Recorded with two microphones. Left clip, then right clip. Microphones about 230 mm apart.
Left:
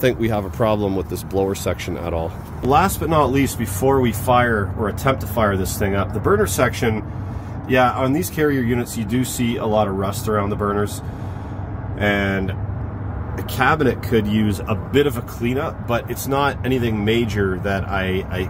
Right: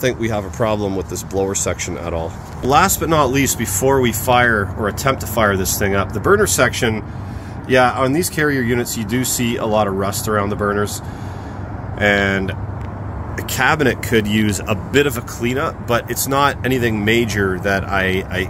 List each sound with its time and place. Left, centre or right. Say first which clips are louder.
0.0 s speech: even; centre
12.0 s speech: right 5 dB; centre